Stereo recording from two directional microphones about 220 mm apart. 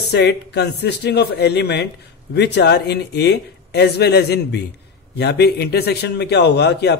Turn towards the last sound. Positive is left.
turn(degrees=50)  # may be behind; listen again after turning